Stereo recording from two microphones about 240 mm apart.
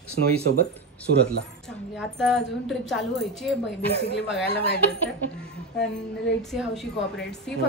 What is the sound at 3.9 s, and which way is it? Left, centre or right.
Speech, left.